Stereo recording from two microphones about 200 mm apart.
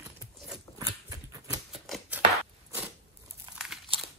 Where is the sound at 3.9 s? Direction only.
25° right (ahead or behind).